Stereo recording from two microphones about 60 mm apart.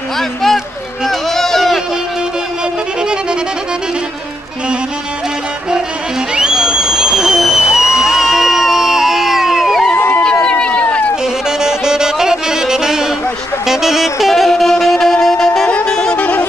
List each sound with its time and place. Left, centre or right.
1.0 s run: centre
6.3 s a sound: centre
7.6 s crowd: left
8.0 s a sound: centre
9.9 s a sound: left
10.2 s run: centre
11.4 s saxophone: centre
15.8 s music: centre
16.2 s music: left